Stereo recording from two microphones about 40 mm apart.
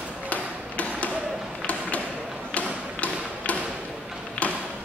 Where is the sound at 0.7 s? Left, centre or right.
Left.